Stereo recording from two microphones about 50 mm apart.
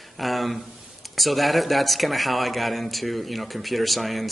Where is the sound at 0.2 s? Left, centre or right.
Centre.